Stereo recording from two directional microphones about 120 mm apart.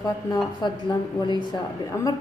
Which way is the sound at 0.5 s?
40° left (ahead or behind).